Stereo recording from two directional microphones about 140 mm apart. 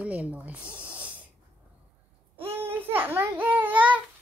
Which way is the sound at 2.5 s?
15° right (ahead or behind).